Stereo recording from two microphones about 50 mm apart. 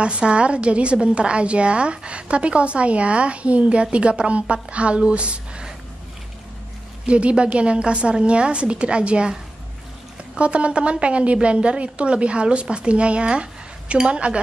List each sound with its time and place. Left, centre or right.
0.0 s a woman's voice: right
7.1 s a woman's voice: right